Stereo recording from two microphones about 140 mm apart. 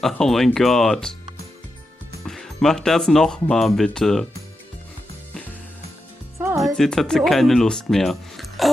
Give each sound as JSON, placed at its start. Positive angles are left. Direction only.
{"t": 0.0, "sound": "speech", "side_deg": 0}
{"t": 2.2, "sound": "speech", "side_deg": 0}
{"t": 6.3, "sound": "music", "side_deg": -20}
{"t": 6.6, "sound": "speech", "side_deg": 5}